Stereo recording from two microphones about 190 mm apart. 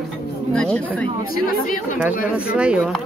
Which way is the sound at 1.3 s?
50° left (ahead or behind).